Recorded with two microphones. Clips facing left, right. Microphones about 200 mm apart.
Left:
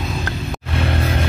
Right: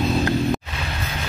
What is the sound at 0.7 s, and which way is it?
Music, 55° left (ahead or behind).